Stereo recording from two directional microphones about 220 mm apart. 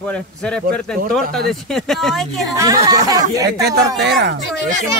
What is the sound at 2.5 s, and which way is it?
Speech, 15° right (ahead or behind).